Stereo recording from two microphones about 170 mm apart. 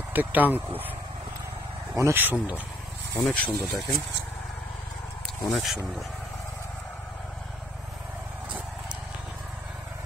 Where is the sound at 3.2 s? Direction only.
10° left (ahead or behind).